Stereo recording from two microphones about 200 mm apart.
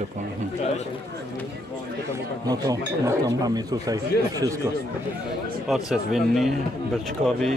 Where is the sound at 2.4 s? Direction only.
20° right (ahead or behind).